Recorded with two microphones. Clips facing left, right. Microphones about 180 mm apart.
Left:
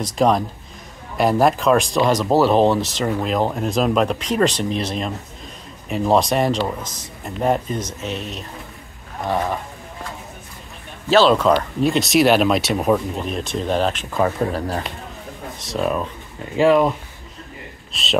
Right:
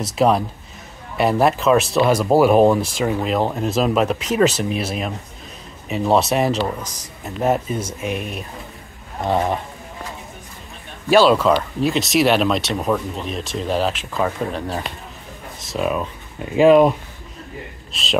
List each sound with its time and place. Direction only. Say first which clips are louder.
0.0 s speech: even; 5° right (ahead or behind)
9.2 s a sound: right 2 dB; 20° right (ahead or behind)
11.1 s speech: right 1 dB; 10° right (ahead or behind)
16.5 s speech: right 3 dB; 15° right (ahead or behind)
17.9 s speech: even; centre (ahead or behind)